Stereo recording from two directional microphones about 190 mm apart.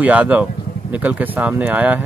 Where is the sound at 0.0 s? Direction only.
5° right (ahead or behind).